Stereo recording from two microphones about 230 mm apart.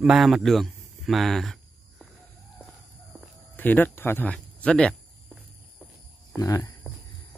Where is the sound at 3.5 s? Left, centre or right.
Centre.